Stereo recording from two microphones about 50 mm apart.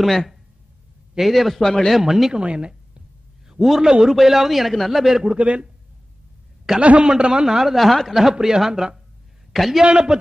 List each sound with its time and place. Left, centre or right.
1.1 s speech: centre
1.6 s speech: centre
2.0 s speech: centre
2.3 s a man's voice: right
3.4 s a man's voice: centre
5.4 s a man's voice: right
6.8 s a man's voice: right
7.4 s speech: centre
7.7 s a man's voice: centre
9.8 s speech: centre